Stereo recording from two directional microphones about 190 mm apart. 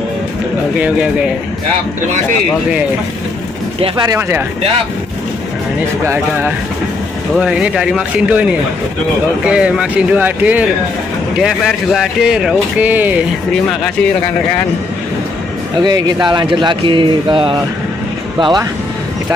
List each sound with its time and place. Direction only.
0.7 s speech: 5° right (ahead or behind)
3.8 s speech: 20° right (ahead or behind)
7.3 s speech: 5° right (ahead or behind)
15.8 s speech: 20° right (ahead or behind)